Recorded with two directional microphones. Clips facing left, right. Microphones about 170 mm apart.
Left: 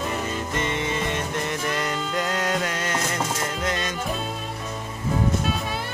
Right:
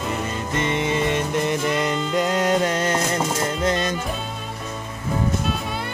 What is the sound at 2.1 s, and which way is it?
Music, 25° right (ahead or behind).